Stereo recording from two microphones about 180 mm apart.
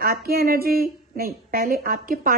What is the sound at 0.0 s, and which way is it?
A woman's voice, 55° right (ahead or behind).